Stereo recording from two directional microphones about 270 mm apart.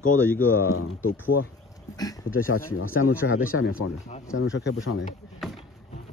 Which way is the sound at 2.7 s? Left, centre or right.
Left.